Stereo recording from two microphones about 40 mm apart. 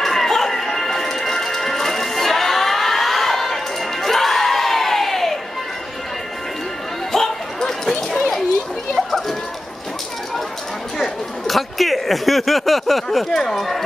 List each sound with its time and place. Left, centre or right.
0.0 s music: centre
7.1 s dog: centre
11.0 s a sound: centre